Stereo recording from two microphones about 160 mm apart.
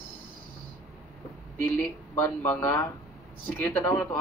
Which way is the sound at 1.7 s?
10° left (ahead or behind).